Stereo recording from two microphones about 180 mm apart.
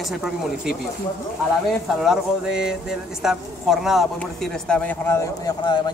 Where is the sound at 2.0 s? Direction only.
5° right (ahead or behind).